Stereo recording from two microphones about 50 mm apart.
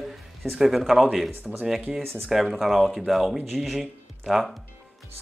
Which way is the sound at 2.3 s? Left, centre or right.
Centre.